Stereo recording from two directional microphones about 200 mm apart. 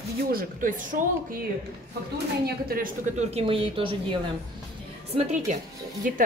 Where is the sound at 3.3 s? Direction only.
30° right (ahead or behind).